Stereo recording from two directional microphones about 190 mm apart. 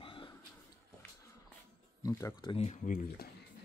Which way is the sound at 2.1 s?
15° left (ahead or behind).